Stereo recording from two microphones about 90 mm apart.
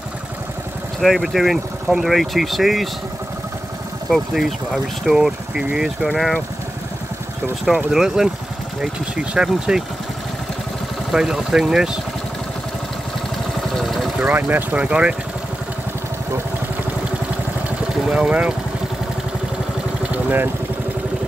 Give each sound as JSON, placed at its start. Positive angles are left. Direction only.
{"t": 1.0, "sound": "speech", "side_deg": 0}
{"t": 4.1, "sound": "speech", "side_deg": 0}
{"t": 7.6, "sound": "speech", "side_deg": -5}
{"t": 11.1, "sound": "speech", "side_deg": -5}
{"t": 13.7, "sound": "vehicle", "side_deg": 0}
{"t": 14.2, "sound": "speech", "side_deg": -20}
{"t": 17.6, "sound": "vehicle", "side_deg": -15}
{"t": 20.2, "sound": "speech", "side_deg": -25}